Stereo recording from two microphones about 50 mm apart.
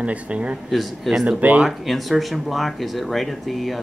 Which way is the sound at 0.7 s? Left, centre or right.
Centre.